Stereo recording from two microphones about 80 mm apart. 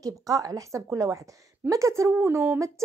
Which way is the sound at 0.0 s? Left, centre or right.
Right.